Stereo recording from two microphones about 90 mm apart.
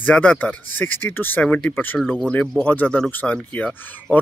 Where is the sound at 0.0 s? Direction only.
15° left (ahead or behind).